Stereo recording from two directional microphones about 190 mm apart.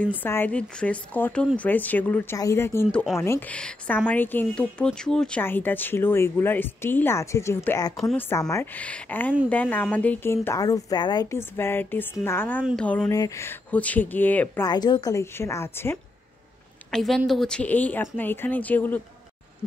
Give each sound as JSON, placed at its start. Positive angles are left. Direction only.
{"t": 0.2, "sound": "speech", "side_deg": 10}
{"t": 13.1, "sound": "speech", "side_deg": 15}
{"t": 14.7, "sound": "speech", "side_deg": 20}
{"t": 16.9, "sound": "speech", "side_deg": 0}